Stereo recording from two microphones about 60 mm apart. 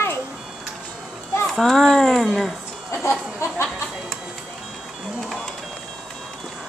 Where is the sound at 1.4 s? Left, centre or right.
Centre.